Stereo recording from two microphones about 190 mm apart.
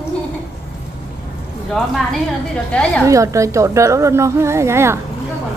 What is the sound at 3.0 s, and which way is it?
A woman's voice, 15° right (ahead or behind).